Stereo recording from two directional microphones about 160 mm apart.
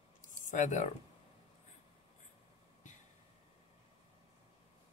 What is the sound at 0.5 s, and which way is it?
Speech, 50° left (ahead or behind).